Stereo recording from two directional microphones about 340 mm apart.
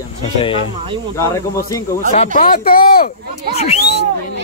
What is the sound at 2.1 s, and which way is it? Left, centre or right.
Speech, left.